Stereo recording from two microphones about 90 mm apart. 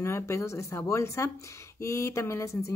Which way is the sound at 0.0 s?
30° left (ahead or behind).